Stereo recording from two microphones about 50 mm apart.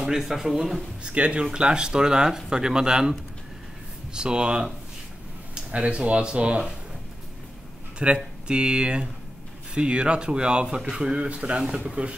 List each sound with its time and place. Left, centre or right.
0.0 s speech: centre
1.0 s speech: right
8.0 s speech: right